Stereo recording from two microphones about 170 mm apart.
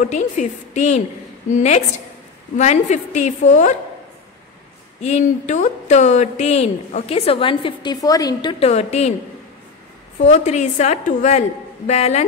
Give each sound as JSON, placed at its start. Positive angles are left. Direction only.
{"t": 0.0, "sound": "a woman's voice", "side_deg": 45}
{"t": 5.0, "sound": "a woman's voice", "side_deg": 45}
{"t": 8.6, "sound": "a woman's voice", "side_deg": 40}
{"t": 10.2, "sound": "a woman's voice", "side_deg": 45}